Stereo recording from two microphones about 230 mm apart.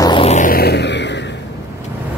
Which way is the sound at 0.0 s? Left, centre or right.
Left.